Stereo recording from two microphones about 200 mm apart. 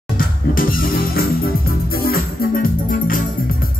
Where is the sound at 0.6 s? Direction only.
45° left (ahead or behind).